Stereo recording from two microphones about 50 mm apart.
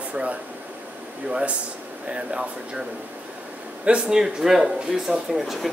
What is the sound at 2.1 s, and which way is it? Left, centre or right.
Speech, centre.